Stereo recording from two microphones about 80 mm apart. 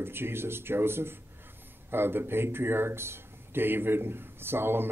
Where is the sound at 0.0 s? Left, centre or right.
Right.